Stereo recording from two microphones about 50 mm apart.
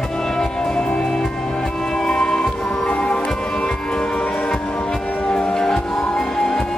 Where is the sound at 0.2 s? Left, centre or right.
Centre.